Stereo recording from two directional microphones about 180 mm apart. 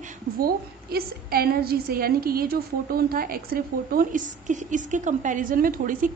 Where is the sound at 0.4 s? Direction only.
55° right (ahead or behind).